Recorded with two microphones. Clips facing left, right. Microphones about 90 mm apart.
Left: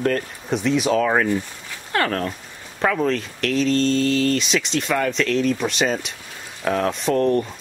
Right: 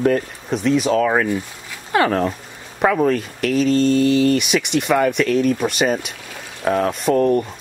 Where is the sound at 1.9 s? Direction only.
10° right (ahead or behind).